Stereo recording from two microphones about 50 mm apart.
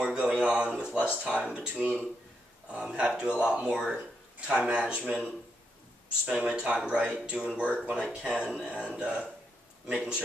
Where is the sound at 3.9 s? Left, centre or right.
Right.